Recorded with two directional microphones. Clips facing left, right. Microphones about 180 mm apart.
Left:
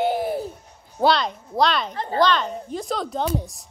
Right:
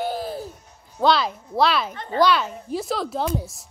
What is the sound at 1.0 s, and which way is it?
Speech, 5° right (ahead or behind).